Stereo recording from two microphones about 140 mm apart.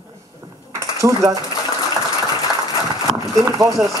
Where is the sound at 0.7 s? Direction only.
25° right (ahead or behind).